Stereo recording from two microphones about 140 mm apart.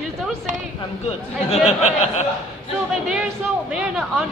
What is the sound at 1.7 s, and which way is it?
Speech, 55° left (ahead or behind).